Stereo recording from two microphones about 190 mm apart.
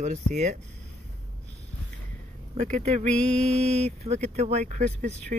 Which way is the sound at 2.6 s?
40° right (ahead or behind).